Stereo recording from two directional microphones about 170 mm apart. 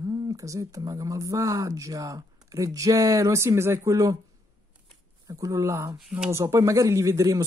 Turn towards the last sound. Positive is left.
turn(degrees=-20)  # may be behind; listen again after turning